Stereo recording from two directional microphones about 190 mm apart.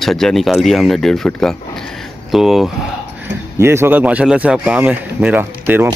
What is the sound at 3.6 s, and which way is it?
Speech, 15° right (ahead or behind).